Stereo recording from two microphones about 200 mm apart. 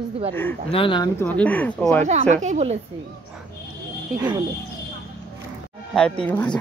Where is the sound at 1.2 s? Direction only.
10° left (ahead or behind).